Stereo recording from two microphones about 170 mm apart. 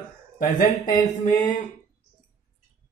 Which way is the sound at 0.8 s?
25° left (ahead or behind).